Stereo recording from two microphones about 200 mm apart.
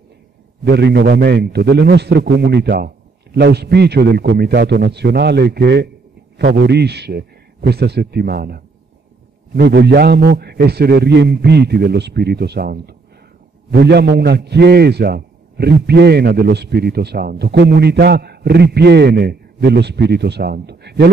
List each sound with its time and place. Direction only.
0.7 s a man's voice: 55° right (ahead or behind)